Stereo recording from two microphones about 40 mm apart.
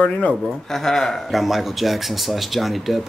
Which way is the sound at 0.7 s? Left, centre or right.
Centre.